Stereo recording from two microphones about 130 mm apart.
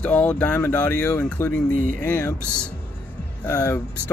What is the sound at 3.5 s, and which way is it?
Speech, 25° left (ahead or behind).